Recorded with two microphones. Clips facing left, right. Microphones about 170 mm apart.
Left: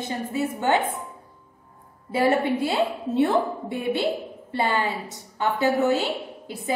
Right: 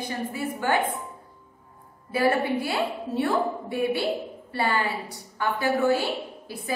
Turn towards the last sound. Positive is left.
turn(degrees=20)  # may be behind; listen again after turning